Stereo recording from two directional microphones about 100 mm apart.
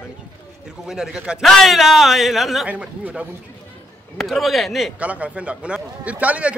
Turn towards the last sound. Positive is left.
turn(degrees=-15)  # may be behind; listen again after turning